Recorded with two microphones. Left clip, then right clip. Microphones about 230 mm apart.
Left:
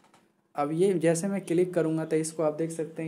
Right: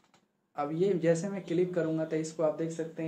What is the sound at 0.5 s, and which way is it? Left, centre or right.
Speech, left.